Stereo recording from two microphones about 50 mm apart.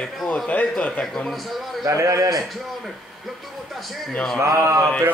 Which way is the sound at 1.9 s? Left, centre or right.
Right.